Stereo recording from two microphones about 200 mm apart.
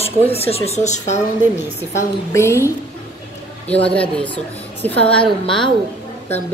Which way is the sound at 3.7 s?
5° left (ahead or behind).